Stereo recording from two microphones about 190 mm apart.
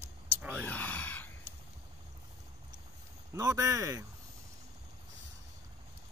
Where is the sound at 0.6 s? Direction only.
10° left (ahead or behind).